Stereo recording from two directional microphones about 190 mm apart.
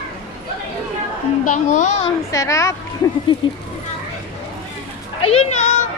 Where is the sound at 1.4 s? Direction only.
40° left (ahead or behind).